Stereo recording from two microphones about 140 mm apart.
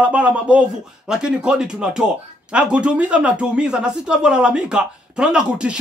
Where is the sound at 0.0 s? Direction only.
10° right (ahead or behind).